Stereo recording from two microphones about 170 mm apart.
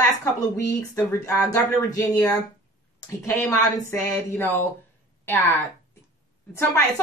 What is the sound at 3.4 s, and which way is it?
A woman's voice, 15° left (ahead or behind).